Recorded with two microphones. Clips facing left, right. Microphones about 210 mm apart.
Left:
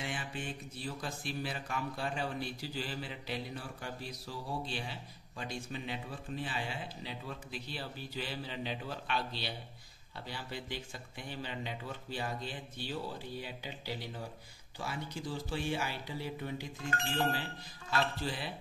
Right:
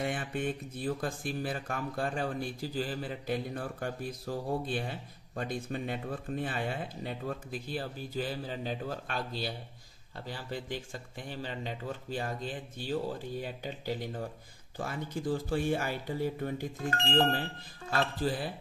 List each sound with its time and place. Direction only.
0.0 s speech: 55° right (ahead or behind)